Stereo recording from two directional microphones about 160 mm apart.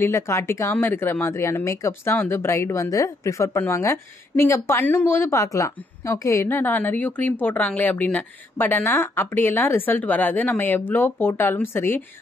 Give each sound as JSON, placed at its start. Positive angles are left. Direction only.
{"t": 0.0, "sound": "speech", "side_deg": 15}